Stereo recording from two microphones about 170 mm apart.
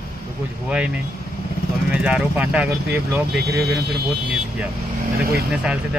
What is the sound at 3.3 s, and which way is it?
Speech, 75° right (ahead or behind).